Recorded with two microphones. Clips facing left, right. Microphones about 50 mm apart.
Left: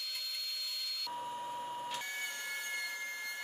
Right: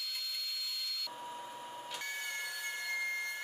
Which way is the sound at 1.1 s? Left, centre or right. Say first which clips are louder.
Left 4 dB; centre.